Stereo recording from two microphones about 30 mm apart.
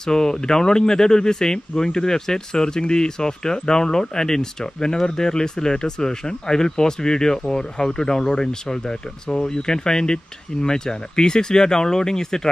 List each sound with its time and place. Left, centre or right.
0.0 s speech: left